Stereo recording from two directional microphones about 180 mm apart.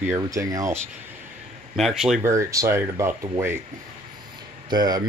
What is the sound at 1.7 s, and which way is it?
Speech, centre (ahead or behind).